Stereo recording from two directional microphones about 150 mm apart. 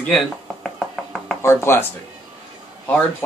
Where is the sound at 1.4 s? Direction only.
15° left (ahead or behind).